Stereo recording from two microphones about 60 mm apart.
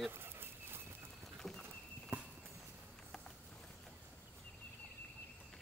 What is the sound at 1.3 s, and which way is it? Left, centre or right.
Horse, centre.